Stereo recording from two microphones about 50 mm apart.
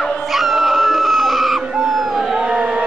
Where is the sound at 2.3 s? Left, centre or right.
Centre.